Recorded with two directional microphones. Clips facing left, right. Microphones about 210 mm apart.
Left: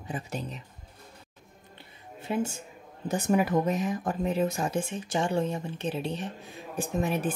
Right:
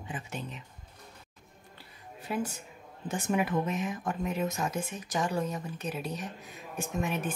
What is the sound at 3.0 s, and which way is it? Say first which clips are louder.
Speech: left 4 dB; 40° left (ahead or behind).